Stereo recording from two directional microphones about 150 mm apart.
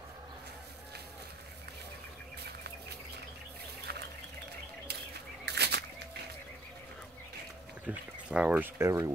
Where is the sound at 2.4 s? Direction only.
90° right.